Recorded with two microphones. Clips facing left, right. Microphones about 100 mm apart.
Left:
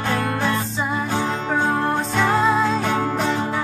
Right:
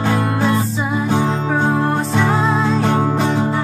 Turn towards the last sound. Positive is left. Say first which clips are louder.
# right 4 dB
turn(degrees=-10)  # may be behind; listen again after turning